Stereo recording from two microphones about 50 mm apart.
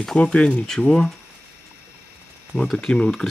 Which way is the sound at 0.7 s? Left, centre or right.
Centre.